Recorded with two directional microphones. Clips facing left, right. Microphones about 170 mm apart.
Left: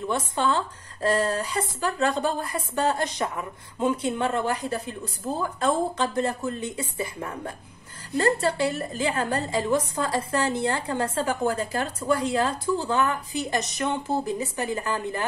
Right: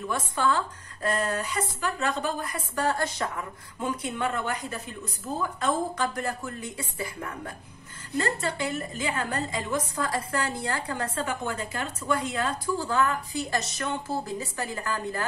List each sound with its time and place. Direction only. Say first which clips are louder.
0.1 s a woman's voice: left 1 dB; 25° left (ahead or behind)